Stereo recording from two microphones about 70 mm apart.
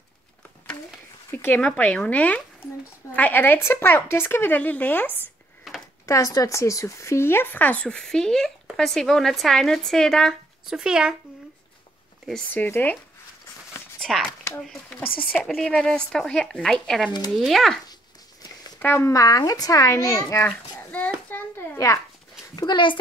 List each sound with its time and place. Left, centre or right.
1.3 s speech: left
1.8 s a woman's voice: left
6.0 s speech: left
7.8 s speech: centre
10.7 s speech: centre
12.5 s a woman's voice: left
14.6 s speech: centre
15.0 s a woman's voice: left
15.3 s speech: centre
18.8 s speech: left
19.0 s speech: left
20.4 s a sound: centre
21.7 s speech: left
22.7 s a child's voice: left